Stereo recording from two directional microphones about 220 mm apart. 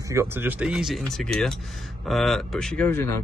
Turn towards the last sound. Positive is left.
turn(degrees=10)  # may be behind; listen again after turning